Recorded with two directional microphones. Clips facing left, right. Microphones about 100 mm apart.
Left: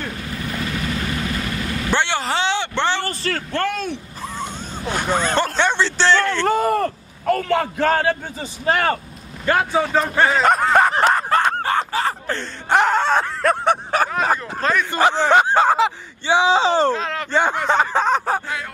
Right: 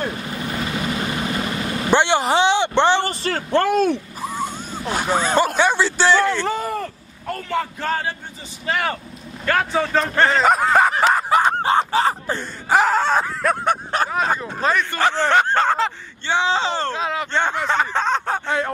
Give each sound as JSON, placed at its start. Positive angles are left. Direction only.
{"t": 0.3, "sound": "vehicle", "side_deg": -20}
{"t": 4.2, "sound": "speech", "side_deg": -10}
{"t": 6.4, "sound": "a man's voice", "side_deg": 50}
{"t": 8.6, "sound": "speech", "side_deg": 40}
{"t": 9.5, "sound": "speech", "side_deg": 10}
{"t": 12.7, "sound": "a sound", "side_deg": 0}
{"t": 14.9, "sound": "speech", "side_deg": 15}
{"t": 16.9, "sound": "speech", "side_deg": -5}
{"t": 17.3, "sound": "speech", "side_deg": 10}